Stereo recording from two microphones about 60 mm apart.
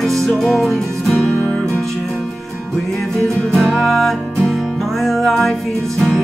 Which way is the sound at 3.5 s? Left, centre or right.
Centre.